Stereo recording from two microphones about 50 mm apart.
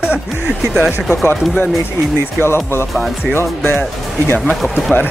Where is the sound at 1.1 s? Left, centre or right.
Left.